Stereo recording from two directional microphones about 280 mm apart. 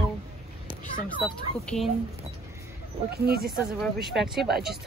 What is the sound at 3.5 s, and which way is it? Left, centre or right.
A woman's voice, centre.